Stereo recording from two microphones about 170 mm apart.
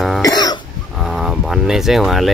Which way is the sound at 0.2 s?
25° left (ahead or behind).